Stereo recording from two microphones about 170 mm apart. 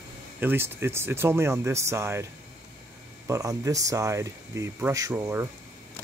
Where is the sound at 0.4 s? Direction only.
10° right (ahead or behind).